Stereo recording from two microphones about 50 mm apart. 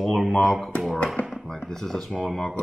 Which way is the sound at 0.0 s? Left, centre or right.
Centre.